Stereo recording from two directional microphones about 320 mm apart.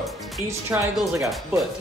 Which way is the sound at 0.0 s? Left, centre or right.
Centre.